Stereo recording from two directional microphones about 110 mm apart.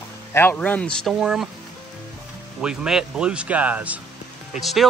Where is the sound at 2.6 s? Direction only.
5° right (ahead or behind).